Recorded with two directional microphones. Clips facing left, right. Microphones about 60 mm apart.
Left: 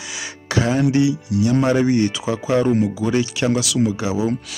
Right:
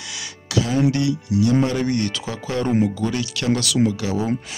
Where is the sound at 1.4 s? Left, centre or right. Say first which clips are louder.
Left 3 dB; left.